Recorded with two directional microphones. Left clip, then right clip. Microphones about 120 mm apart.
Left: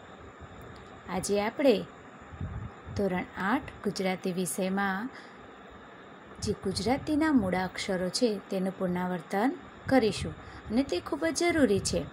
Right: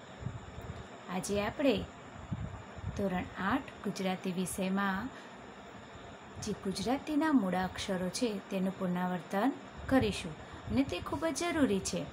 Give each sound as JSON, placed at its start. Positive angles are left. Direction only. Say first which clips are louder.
{"t": 1.0, "sound": "speech", "louder": "left 5 dB", "side_deg": 55}
{"t": 3.0, "sound": "speech", "louder": "left 5 dB", "side_deg": 55}
{"t": 6.4, "sound": "speech", "louder": "left 5 dB", "side_deg": 45}